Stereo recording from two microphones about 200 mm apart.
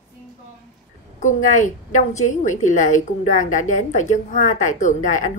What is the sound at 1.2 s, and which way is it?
A woman's voice, 40° left (ahead or behind).